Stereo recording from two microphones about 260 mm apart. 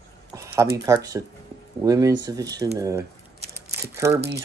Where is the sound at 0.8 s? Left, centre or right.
Centre.